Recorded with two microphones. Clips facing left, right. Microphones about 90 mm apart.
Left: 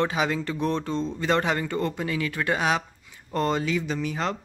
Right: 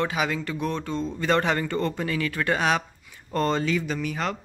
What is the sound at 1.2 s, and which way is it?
Speech, 20° left (ahead or behind).